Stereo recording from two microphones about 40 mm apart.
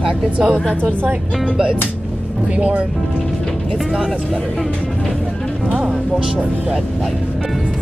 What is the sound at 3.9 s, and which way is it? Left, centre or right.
Speech, centre.